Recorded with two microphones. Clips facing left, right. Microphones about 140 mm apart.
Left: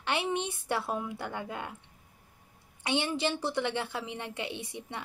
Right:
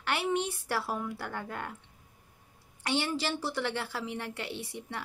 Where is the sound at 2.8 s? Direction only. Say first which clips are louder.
Left 1 dB; 20° left (ahead or behind).